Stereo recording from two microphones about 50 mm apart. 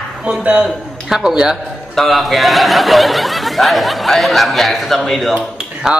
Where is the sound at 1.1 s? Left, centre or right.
Centre.